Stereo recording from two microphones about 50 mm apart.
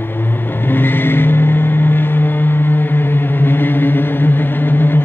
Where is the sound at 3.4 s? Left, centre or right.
Left.